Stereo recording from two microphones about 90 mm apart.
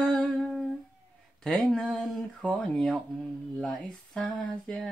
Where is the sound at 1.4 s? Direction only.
5° left (ahead or behind).